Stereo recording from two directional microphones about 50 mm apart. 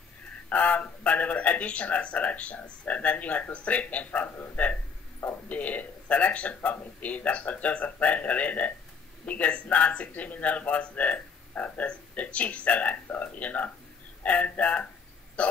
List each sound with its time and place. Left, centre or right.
0.5 s speech: left